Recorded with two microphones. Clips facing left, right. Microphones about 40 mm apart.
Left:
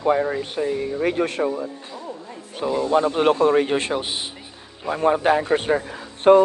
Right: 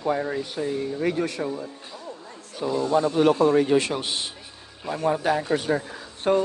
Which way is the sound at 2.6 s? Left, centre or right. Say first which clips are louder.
Left 3 dB; left.